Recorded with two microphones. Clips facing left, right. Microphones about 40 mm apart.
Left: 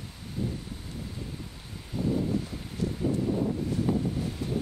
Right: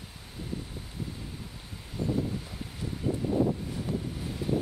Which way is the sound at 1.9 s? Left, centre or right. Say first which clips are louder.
Left 3 dB; centre.